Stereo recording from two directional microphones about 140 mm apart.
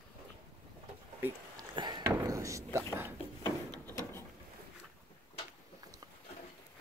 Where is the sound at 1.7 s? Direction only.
30° right (ahead or behind).